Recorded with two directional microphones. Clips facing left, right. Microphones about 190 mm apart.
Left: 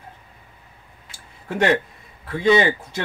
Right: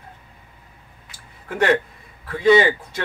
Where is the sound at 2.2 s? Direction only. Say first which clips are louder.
Right 2 dB; 25° left (ahead or behind).